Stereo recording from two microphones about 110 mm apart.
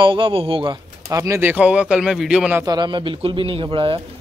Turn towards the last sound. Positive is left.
turn(degrees=-50)  # may be behind; listen again after turning